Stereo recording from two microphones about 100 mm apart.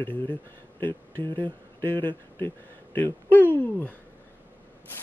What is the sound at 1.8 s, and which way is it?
Speech, 55° right (ahead or behind).